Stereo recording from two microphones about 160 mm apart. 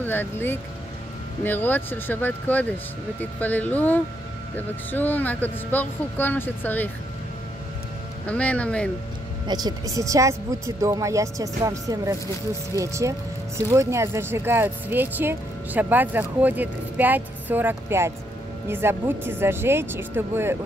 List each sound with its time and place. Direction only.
0.0 s speech: 15° left (ahead or behind)
8.3 s speech: 10° left (ahead or behind)
9.5 s speech: 25° right (ahead or behind)